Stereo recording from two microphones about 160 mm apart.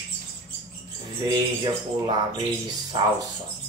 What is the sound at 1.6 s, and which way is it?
Speech, 30° right (ahead or behind).